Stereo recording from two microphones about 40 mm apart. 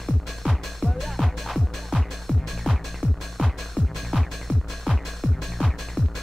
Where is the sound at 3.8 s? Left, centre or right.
Right.